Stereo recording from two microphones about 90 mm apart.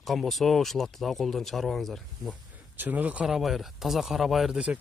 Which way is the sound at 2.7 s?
20° right (ahead or behind).